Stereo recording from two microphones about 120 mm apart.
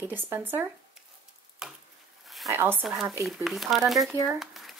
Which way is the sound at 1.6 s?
5° right (ahead or behind).